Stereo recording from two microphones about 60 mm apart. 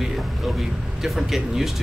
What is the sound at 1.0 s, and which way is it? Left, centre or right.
Speech, centre.